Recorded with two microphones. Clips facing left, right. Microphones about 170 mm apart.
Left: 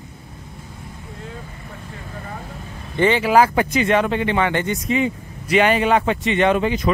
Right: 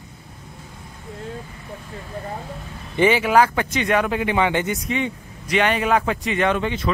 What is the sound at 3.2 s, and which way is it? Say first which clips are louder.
Speech: left 2 dB; 5° left (ahead or behind).